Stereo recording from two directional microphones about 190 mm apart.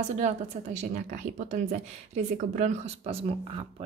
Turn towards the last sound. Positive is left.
turn(degrees=-30)  # may be behind; listen again after turning